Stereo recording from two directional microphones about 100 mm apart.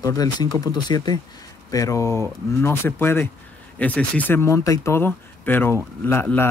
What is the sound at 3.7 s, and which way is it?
Speech, 15° left (ahead or behind).